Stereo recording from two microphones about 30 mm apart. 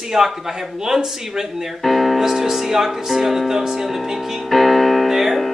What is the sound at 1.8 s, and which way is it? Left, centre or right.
Music, centre.